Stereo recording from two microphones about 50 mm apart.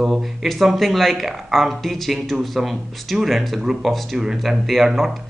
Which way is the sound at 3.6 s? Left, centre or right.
Centre.